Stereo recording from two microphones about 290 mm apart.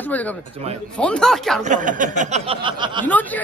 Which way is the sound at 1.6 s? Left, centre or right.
Right.